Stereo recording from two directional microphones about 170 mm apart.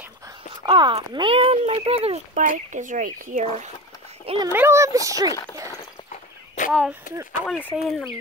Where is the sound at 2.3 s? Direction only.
50° right (ahead or behind).